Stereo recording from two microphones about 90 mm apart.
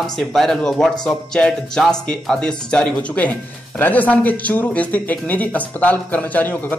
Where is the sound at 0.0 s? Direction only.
5° left (ahead or behind).